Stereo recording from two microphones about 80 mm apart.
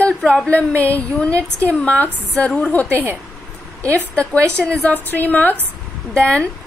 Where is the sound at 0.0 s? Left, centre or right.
Centre.